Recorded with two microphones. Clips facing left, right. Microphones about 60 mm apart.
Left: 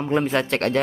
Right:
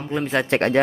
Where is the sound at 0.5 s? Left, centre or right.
Right.